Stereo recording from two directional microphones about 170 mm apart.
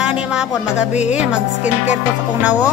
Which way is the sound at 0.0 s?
5° right (ahead or behind).